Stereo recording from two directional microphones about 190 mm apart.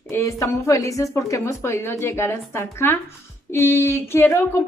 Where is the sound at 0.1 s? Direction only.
15° left (ahead or behind).